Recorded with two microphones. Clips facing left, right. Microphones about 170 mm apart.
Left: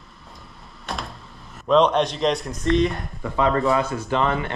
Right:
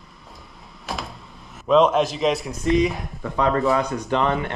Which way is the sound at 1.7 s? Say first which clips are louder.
Right 1 dB; centre (ahead or behind).